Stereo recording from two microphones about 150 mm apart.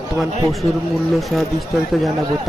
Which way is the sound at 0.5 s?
Centre (ahead or behind).